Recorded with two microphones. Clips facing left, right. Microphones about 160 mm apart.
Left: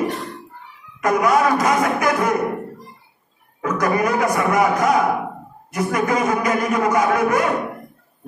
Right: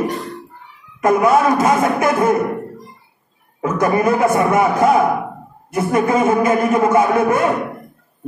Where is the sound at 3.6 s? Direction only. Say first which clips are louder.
Right 3 dB; 25° right (ahead or behind).